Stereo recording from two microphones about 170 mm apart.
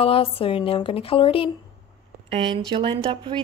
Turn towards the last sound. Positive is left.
turn(degrees=-30)  # may be behind; listen again after turning